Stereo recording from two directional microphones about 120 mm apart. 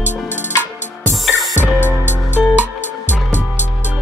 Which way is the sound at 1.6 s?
15° right (ahead or behind).